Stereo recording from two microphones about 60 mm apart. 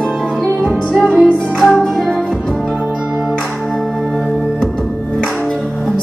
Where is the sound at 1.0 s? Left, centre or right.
Centre.